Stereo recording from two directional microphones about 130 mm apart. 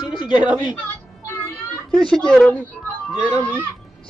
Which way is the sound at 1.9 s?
5° left (ahead or behind).